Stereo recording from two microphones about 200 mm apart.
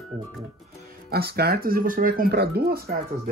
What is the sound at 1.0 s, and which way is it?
Speech, 50° right (ahead or behind).